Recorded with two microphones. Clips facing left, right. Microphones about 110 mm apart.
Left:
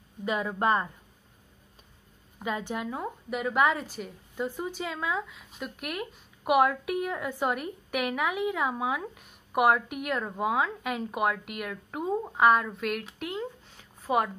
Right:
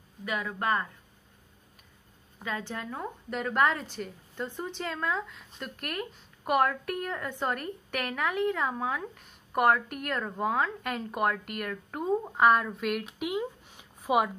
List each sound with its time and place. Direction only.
0.2 s speech: 25° left (ahead or behind)
2.3 s a woman's voice: 15° left (ahead or behind); by 14.3 s 10° right (ahead or behind)